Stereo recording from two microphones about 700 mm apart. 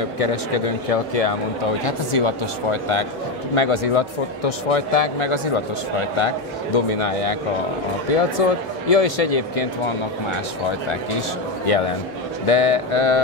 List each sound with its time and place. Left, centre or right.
0.2 s speech: left
1.9 s speech: left
10.9 s speech: left